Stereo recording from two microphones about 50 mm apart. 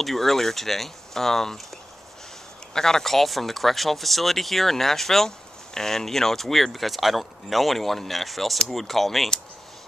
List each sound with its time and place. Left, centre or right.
0.0 s speech: centre
2.7 s speech: centre